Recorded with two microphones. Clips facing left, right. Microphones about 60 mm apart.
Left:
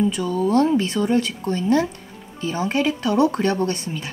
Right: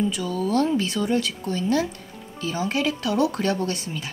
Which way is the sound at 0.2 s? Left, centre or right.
Left.